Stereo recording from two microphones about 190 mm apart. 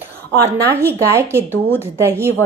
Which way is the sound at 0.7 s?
15° right (ahead or behind).